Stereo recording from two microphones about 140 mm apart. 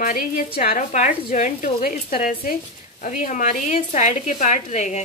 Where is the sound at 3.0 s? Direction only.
60° left (ahead or behind).